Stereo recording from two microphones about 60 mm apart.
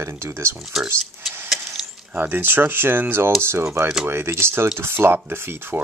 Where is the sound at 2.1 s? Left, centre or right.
Right.